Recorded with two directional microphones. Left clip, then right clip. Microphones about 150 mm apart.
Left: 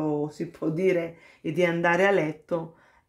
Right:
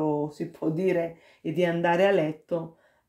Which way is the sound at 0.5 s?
25° left (ahead or behind).